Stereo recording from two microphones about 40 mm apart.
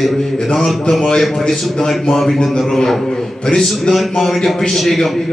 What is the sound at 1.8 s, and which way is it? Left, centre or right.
A man's voice, centre.